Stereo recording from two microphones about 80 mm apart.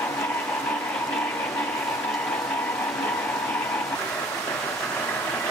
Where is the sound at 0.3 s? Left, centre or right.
Left.